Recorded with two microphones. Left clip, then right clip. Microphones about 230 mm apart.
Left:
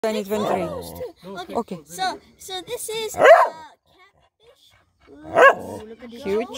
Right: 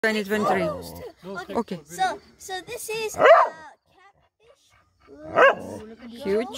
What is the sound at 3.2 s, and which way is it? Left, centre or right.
Dog, left.